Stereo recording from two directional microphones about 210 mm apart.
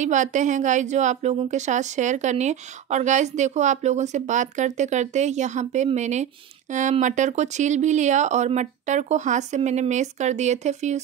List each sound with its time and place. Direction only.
0.0 s a woman's voice: 35° right (ahead or behind)